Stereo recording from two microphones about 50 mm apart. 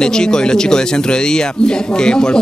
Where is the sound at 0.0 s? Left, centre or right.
Centre.